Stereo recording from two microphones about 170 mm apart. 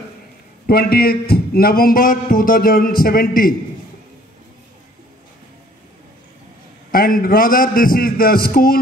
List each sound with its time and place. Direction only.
0.7 s a man's voice: 65° left (ahead or behind)
6.9 s a man's voice: 55° left (ahead or behind)